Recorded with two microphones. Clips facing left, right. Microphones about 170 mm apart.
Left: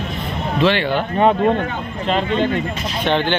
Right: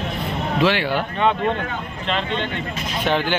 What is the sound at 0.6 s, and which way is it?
Speech, 10° right (ahead or behind).